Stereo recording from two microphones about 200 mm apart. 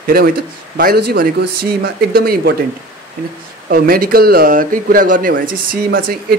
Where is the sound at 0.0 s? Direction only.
50° right (ahead or behind).